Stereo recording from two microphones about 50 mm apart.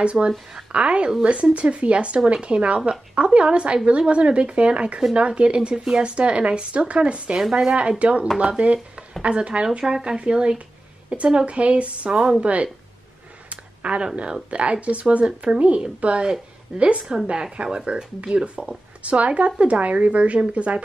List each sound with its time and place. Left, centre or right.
0.0 s a woman's voice: right
13.5 s a sound: right
14.5 s speech: right
17.0 s a woman's voice: centre
17.3 s speech: centre